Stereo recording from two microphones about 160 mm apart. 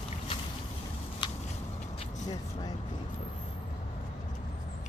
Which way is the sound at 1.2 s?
30° left (ahead or behind).